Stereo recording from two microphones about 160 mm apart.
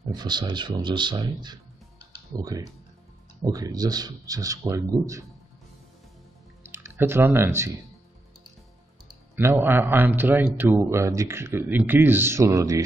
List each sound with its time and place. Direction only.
0.1 s speech: 25° right (ahead or behind)
6.6 s speech: 15° right (ahead or behind)
9.3 s a man's voice: 15° right (ahead or behind)